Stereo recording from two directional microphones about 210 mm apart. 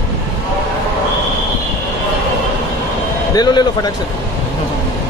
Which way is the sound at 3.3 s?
20° left (ahead or behind).